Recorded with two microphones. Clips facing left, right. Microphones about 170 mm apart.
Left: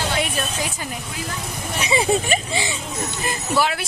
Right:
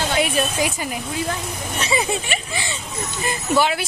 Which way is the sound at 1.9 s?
35° left (ahead or behind).